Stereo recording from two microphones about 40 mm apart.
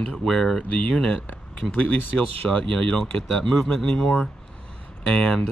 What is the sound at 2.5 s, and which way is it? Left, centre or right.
Speech, left.